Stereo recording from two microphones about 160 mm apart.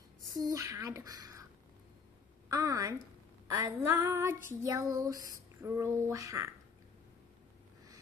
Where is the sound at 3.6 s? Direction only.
15° right (ahead or behind).